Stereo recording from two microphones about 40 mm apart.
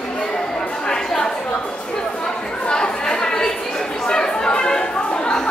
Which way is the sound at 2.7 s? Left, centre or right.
Centre.